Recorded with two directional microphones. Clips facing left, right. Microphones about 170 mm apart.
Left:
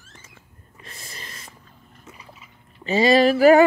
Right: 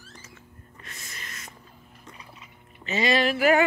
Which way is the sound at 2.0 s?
5° left (ahead or behind).